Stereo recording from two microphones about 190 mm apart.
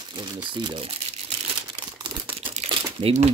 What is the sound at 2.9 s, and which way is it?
Speech, 30° right (ahead or behind).